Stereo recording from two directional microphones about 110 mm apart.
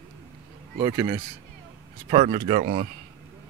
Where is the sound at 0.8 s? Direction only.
45° right (ahead or behind).